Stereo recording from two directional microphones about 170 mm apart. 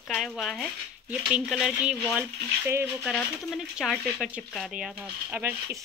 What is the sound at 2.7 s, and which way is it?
Speech, 15° right (ahead or behind).